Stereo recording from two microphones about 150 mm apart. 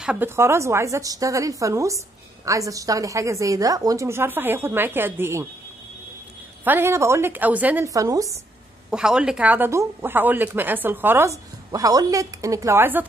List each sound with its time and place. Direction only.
0.0 s speech: 5° right (ahead or behind)
0.4 s a woman's voice: 20° right (ahead or behind)
6.6 s speech: 15° right (ahead or behind)
8.9 s speech: 5° right (ahead or behind)